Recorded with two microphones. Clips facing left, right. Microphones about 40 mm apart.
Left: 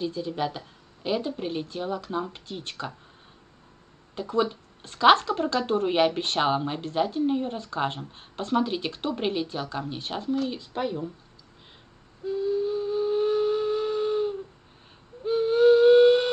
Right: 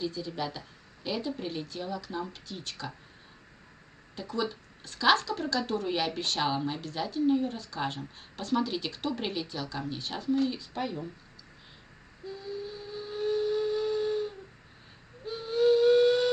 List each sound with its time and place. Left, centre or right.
0.0 s speech: left
4.1 s speech: left
12.3 s a sound: left
15.2 s owl: left